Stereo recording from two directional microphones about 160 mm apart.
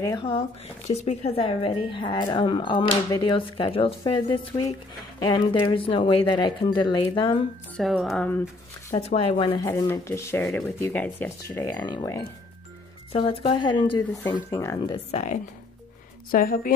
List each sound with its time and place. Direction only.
0.0 s speech: 25° left (ahead or behind)
1.0 s a woman's voice: 40° left (ahead or behind)
7.7 s speech: centre (ahead or behind)
9.0 s a woman's voice: 35° left (ahead or behind)
9.6 s speech: 15° left (ahead or behind)
13.1 s speech: 35° left (ahead or behind)
15.0 s speech: 45° left (ahead or behind)
16.3 s speech: 60° left (ahead or behind)